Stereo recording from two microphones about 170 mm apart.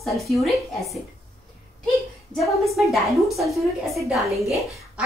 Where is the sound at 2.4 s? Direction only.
Centre (ahead or behind).